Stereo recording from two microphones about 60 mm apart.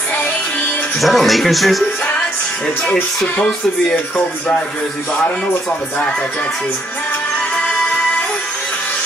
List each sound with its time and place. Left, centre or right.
0.1 s music: left
0.9 s speech: centre
2.6 s speech: centre
5.2 s speech: left